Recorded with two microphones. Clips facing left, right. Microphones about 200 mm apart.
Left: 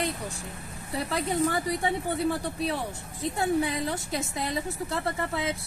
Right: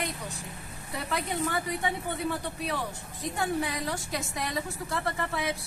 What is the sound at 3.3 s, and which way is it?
A woman's voice, 25° left (ahead or behind).